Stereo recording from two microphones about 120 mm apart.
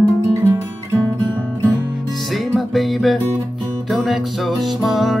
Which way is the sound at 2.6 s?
Centre (ahead or behind).